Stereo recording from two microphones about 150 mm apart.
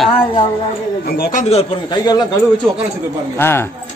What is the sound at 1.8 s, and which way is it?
Speech, 30° left (ahead or behind).